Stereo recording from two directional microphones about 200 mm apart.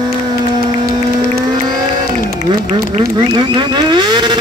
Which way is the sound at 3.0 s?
20° right (ahead or behind).